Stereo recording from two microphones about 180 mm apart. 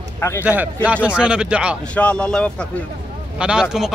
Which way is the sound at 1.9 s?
5° left (ahead or behind).